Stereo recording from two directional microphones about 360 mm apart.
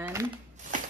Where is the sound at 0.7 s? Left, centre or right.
Right.